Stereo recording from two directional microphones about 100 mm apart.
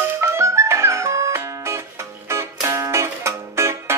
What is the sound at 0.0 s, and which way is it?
Music, 25° right (ahead or behind).